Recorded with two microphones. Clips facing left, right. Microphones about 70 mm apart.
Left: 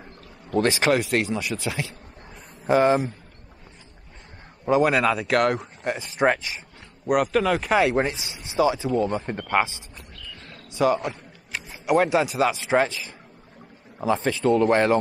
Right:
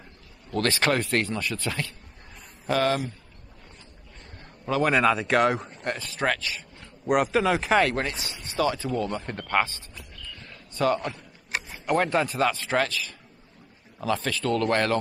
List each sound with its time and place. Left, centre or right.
0.6 s speech: centre
2.6 s speech: left
4.8 s speech: centre
5.9 s speech: left
7.1 s speech: centre
7.8 s speech: centre
10.4 s cricket: centre
11.7 s speech: centre